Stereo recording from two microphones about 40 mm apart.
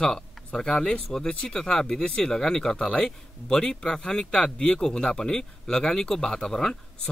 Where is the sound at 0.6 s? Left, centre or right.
Centre.